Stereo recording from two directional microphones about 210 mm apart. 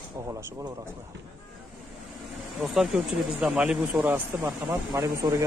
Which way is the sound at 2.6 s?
Centre (ahead or behind).